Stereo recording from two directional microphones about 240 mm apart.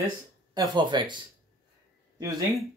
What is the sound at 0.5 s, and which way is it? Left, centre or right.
Speech, centre.